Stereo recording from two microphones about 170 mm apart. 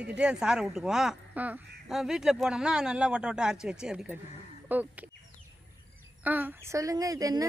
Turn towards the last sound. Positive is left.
turn(degrees=-20)  # may be behind; listen again after turning